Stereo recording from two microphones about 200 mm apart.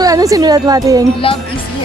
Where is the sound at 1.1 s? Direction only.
25° left (ahead or behind).